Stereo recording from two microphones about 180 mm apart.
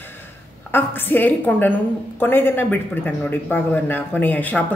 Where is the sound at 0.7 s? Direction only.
10° left (ahead or behind).